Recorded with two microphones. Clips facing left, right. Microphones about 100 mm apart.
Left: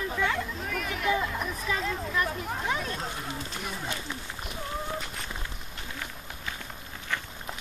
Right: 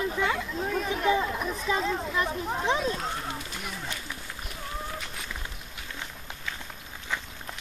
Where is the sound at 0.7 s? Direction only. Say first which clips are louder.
Right 4 dB; 30° right (ahead or behind).